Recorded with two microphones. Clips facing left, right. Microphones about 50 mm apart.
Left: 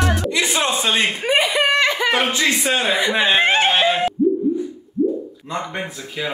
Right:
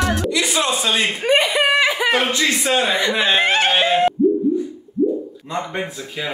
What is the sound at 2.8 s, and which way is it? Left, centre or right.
Speech, centre.